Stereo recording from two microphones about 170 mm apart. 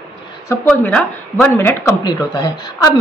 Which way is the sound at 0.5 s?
10° left (ahead or behind).